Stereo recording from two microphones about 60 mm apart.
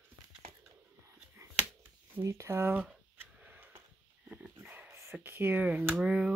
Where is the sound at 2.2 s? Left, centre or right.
Right.